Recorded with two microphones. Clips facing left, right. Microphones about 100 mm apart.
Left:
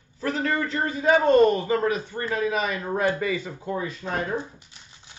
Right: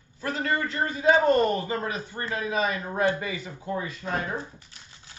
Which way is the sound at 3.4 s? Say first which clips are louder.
Left 2 dB; 30° left (ahead or behind).